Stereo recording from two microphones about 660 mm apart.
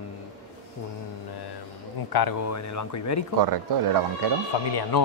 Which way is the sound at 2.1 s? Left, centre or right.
Left.